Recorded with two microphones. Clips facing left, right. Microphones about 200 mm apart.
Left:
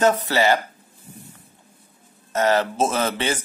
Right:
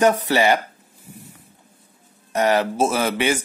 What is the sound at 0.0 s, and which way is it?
Speech, 15° right (ahead or behind).